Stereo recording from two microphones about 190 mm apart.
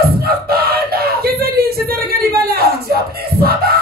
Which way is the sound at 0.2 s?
55° right (ahead or behind).